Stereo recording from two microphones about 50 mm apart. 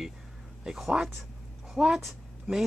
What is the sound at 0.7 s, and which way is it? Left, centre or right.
Speech, centre.